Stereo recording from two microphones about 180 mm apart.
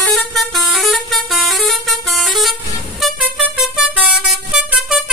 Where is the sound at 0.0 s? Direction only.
Centre (ahead or behind).